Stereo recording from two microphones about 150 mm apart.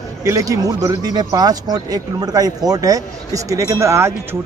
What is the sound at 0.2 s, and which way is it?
A man's voice, 20° right (ahead or behind).